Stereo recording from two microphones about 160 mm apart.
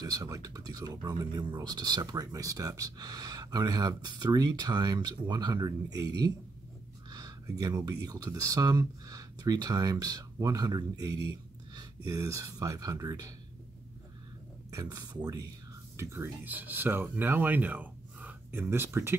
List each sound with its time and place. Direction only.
0.0 s speech: 20° right (ahead or behind)
14.7 s speech: 25° right (ahead or behind)